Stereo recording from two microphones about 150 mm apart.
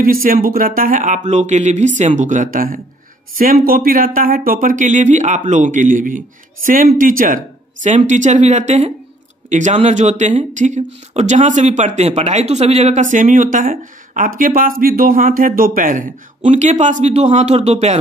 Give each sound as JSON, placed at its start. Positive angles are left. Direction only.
{"t": 0.0, "sound": "speech", "side_deg": -70}